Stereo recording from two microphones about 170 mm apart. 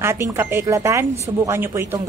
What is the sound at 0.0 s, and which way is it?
A woman's voice, 15° right (ahead or behind).